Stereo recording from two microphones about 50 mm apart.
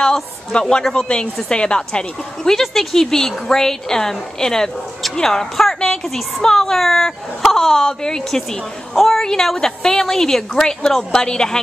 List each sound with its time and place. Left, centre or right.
0.0 s a woman's voice: centre